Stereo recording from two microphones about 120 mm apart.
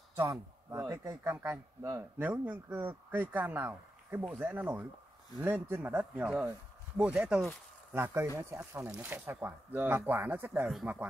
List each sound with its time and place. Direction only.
0.7 s speech: 20° right (ahead or behind); by 7.5 s 5° right (ahead or behind)
7.9 s speech: 20° right (ahead or behind)